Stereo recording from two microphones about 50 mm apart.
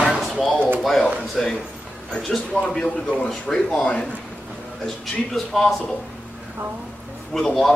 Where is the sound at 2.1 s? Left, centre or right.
Centre.